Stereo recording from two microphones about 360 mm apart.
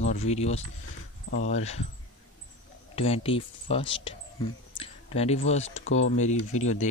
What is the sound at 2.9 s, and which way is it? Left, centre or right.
Speech, centre.